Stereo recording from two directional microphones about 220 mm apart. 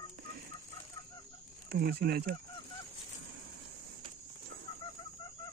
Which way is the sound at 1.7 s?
45° right (ahead or behind).